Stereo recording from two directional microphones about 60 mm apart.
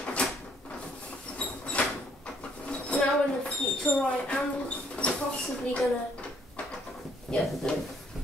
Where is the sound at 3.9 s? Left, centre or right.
Left.